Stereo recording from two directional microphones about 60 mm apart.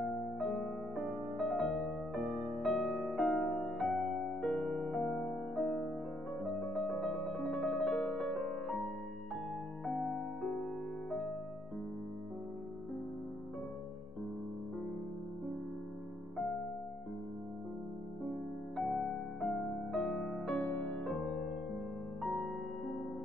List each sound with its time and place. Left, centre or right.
0.4 s music: centre
9.8 s music: centre
18.8 s music: centre
22.2 s music: centre